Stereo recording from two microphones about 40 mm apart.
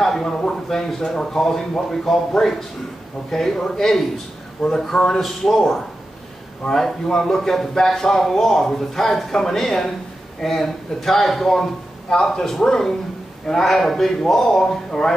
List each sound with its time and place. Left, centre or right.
0.0 s a sound: centre
0.7 s a man's voice: centre
3.3 s a man's voice: centre